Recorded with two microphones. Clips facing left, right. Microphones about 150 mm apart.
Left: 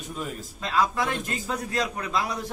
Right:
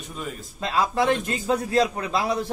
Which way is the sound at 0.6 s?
30° right (ahead or behind).